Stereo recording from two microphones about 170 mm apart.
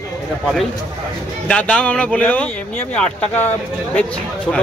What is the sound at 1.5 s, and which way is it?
Speech, 5° left (ahead or behind).